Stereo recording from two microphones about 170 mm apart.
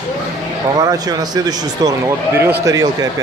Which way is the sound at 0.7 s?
20° right (ahead or behind).